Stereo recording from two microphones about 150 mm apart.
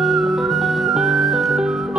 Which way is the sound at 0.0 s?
Centre (ahead or behind).